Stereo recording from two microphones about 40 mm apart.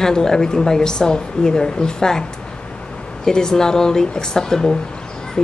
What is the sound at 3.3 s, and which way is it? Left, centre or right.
Speech, centre.